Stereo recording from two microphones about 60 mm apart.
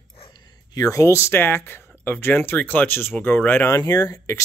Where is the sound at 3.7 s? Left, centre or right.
Left.